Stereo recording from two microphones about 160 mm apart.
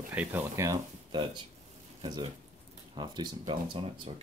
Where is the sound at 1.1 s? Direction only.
30° right (ahead or behind).